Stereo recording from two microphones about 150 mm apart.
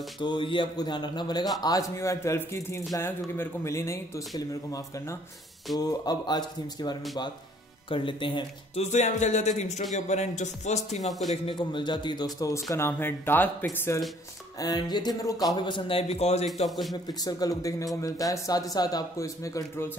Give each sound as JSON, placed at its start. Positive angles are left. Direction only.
{"t": 0.2, "sound": "a man's voice", "side_deg": 30}
{"t": 8.9, "sound": "speech", "side_deg": 50}
{"t": 11.1, "sound": "a man's voice", "side_deg": 0}
{"t": 11.4, "sound": "a man's voice", "side_deg": 30}
{"t": 14.6, "sound": "speech", "side_deg": 25}
{"t": 16.6, "sound": "a man's voice", "side_deg": 0}
{"t": 16.9, "sound": "speech", "side_deg": 25}